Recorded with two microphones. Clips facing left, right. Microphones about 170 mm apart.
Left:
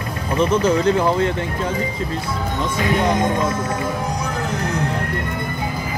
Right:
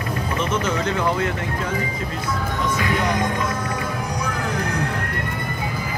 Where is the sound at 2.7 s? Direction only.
25° left (ahead or behind).